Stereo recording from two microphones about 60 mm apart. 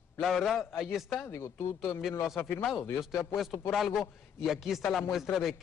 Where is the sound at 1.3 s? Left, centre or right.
Left.